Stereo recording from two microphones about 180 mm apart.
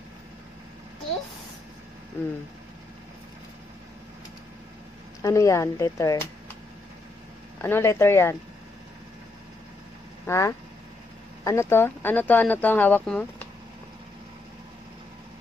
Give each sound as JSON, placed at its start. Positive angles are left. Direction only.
{"t": 5.2, "sound": "speech", "side_deg": 15}
{"t": 7.6, "sound": "speech", "side_deg": 15}
{"t": 10.2, "sound": "speech", "side_deg": 15}